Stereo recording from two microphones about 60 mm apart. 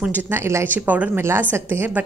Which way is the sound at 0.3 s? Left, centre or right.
Right.